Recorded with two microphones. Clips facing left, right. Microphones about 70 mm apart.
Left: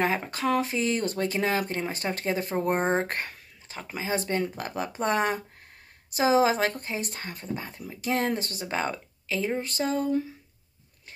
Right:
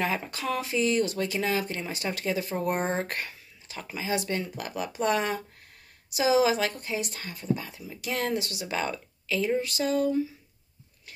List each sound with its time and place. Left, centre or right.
0.0 s speech: left